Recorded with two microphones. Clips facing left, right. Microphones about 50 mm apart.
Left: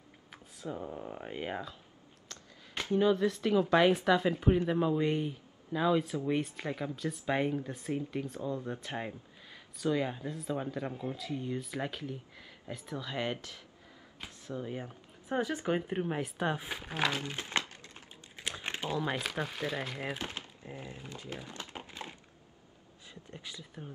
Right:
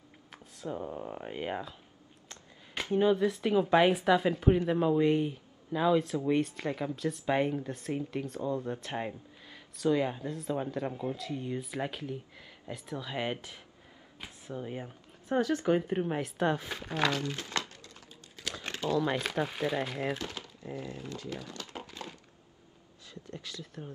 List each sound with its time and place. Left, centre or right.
0.3 s a sound: centre
0.7 s speech: centre
2.2 s a sound: right
3.2 s a woman's voice: centre
13.1 s a woman's voice: centre
14.2 s a sound: centre
14.6 s a woman's voice: centre
15.2 s speech: centre
17.2 s a sound: left
19.0 s speech: centre
20.2 s speech: left
23.2 s speech: centre